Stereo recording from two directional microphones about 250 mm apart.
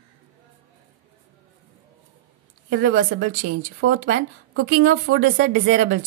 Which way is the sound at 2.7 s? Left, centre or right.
Right.